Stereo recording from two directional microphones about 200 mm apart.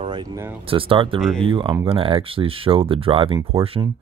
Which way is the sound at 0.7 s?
25° right (ahead or behind).